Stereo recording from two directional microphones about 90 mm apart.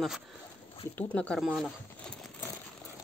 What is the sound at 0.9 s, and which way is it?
Speech, 15° left (ahead or behind).